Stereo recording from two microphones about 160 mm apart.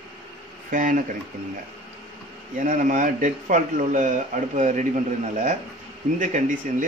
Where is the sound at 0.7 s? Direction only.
55° right (ahead or behind).